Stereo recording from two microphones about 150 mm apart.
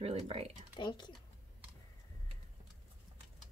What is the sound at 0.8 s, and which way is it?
Speech, 30° left (ahead or behind).